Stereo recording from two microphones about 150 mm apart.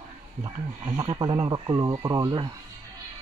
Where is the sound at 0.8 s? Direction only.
35° right (ahead or behind).